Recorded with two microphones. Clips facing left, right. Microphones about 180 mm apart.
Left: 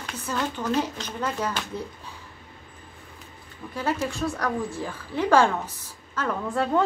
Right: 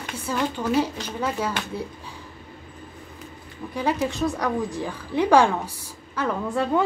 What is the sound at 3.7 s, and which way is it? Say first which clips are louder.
A woman's voice: right 3 dB; 15° right (ahead or behind).